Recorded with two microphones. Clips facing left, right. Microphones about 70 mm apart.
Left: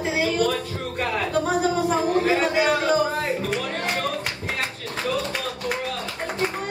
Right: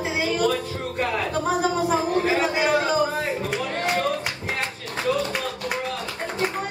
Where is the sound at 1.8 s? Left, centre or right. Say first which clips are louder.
Left 1 dB; centre.